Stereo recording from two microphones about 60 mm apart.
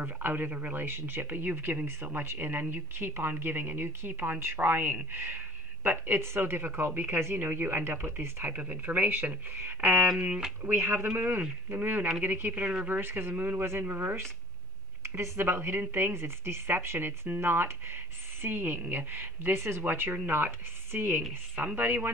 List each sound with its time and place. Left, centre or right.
0.0 s speech: right
0.8 s speech: right
8.5 s speech: right
11.1 s speech: right
19.8 s speech: right